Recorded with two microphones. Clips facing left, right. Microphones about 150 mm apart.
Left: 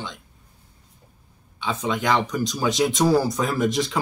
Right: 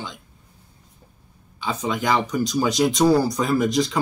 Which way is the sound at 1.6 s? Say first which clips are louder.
Even; 5° right (ahead or behind).